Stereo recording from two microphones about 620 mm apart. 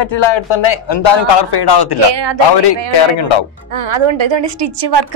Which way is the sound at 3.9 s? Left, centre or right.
Right.